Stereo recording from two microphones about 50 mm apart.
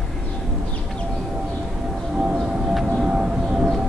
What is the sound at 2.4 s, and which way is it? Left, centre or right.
Music, centre.